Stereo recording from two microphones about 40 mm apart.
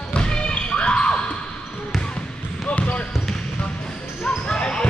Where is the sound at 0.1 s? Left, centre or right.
Left.